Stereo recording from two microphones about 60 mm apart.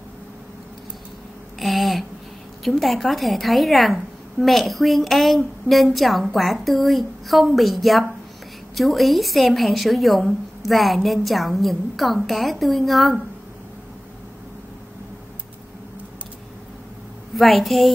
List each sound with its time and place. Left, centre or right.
1.6 s a sound: centre
2.8 s a woman's voice: centre
17.4 s a woman's voice: centre